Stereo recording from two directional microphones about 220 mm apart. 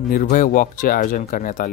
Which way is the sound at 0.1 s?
35° left (ahead or behind).